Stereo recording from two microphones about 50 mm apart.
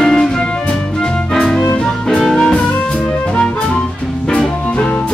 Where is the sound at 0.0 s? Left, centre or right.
Centre.